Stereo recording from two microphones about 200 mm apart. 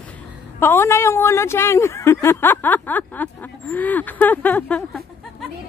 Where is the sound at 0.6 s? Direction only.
10° left (ahead or behind).